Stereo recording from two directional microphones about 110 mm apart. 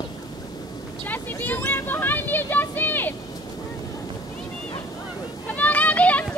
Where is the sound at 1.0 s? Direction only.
15° left (ahead or behind).